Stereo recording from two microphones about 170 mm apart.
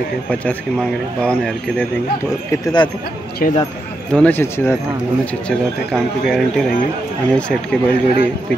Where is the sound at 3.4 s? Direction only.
55° left (ahead or behind).